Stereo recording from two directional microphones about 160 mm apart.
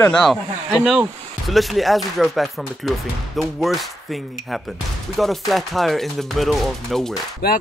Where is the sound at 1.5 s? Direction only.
Centre (ahead or behind).